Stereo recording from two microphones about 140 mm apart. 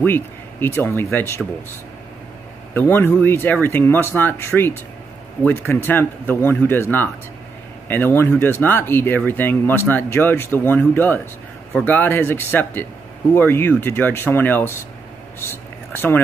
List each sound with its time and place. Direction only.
0.0 s speech: 15° left (ahead or behind)
2.7 s speech: 15° left (ahead or behind)
15.4 s a sound: 15° left (ahead or behind)